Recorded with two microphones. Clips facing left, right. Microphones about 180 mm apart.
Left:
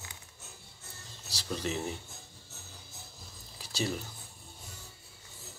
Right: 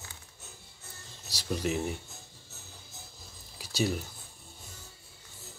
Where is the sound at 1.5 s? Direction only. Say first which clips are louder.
Right 4 dB; 10° right (ahead or behind).